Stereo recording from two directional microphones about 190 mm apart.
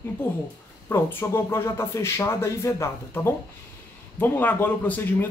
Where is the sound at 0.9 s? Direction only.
10° left (ahead or behind).